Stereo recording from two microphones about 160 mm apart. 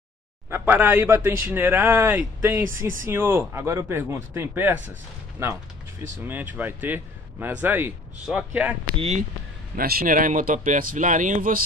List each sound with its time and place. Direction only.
0.5 s speech: 15° right (ahead or behind)
8.9 s speech: 40° right (ahead or behind)
9.8 s speech: 65° right (ahead or behind)